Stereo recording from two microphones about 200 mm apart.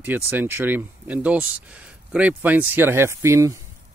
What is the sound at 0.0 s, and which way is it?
Speech, 10° right (ahead or behind).